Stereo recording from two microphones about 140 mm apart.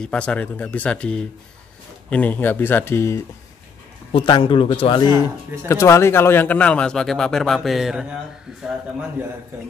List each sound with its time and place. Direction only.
0.0 s speech: 5° left (ahead or behind)
4.1 s a man's voice: 35° left (ahead or behind)
5.7 s speech: 20° left (ahead or behind); by 8.1 s 5° right (ahead or behind)